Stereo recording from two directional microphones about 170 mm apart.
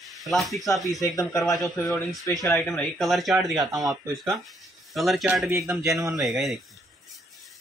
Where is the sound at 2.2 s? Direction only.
20° left (ahead or behind).